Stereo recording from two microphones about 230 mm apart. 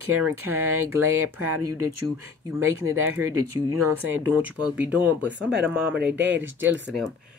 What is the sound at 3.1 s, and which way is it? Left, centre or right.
Speech, right.